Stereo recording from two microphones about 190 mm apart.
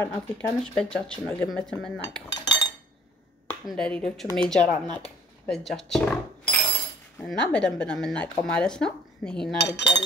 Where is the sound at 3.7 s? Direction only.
5° left (ahead or behind).